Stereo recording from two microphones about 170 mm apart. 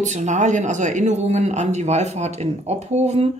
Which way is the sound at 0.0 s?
45° right (ahead or behind).